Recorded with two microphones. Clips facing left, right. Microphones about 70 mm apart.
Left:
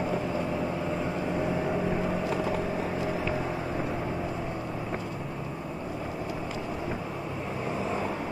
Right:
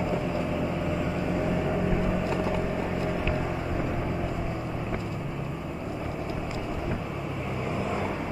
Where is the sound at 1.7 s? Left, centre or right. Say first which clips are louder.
Right 1 dB; centre.